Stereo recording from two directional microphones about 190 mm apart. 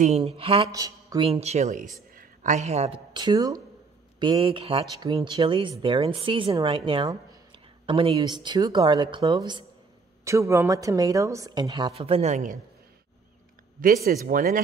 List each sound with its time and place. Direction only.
0.0 s speech: 35° right (ahead or behind)
0.7 s speech: 20° right (ahead or behind); by 12.5 s 40° right (ahead or behind)
13.7 s speech: 50° right (ahead or behind)